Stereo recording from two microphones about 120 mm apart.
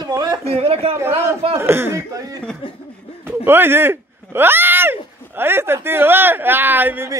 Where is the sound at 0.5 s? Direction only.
55° right (ahead or behind).